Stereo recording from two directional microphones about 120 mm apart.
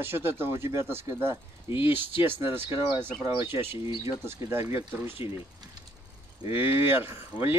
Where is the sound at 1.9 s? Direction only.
15° right (ahead or behind).